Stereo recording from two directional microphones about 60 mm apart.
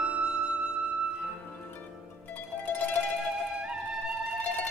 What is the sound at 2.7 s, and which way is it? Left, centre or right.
Music, left.